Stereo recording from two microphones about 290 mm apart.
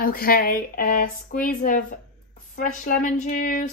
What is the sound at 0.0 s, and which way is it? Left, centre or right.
Speech, left.